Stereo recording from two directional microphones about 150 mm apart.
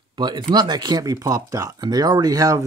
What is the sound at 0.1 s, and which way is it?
Speech, 30° right (ahead or behind).